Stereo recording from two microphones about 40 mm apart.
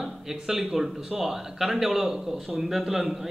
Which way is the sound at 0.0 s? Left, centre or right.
Centre.